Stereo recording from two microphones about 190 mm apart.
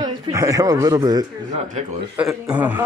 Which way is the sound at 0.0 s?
15° right (ahead or behind).